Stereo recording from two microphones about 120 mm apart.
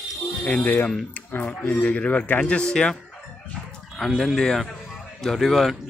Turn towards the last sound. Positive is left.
turn(degrees=0)  # may be behind; listen again after turning